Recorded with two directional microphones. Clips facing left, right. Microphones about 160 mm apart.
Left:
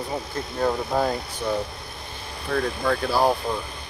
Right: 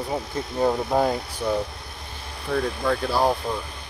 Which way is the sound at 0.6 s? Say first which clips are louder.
Right 2 dB; 15° right (ahead or behind).